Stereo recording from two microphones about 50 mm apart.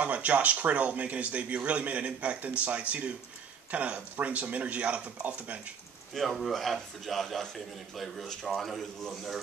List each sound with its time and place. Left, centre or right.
0.0 s speech: right
6.1 s a man's voice: centre